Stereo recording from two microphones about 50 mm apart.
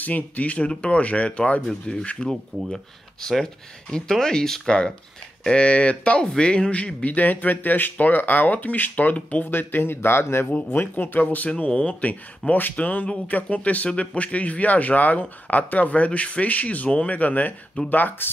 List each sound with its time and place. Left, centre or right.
0.0 s speech: left
1.7 s speech: centre; by 9.5 s left
9.5 s speech: left
10.5 s speech: left
11.2 s speech: left